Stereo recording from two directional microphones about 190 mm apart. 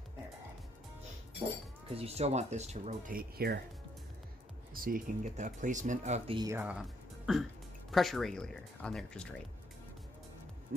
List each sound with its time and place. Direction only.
1.9 s speech: 30° right (ahead or behind); by 3.6 s 55° right (ahead or behind)
4.7 s speech: 50° right (ahead or behind)
6.3 s speech: 20° right (ahead or behind)
6.6 s speech: 5° right (ahead or behind)